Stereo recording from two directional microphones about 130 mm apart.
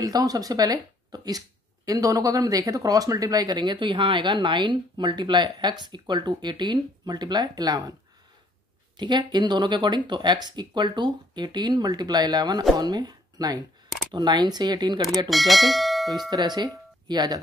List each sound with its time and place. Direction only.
0.0 s speech: 25° right (ahead or behind)
8.9 s speech: 35° right (ahead or behind)
15.2 s speech: centre (ahead or behind)
16.3 s speech: 35° right (ahead or behind)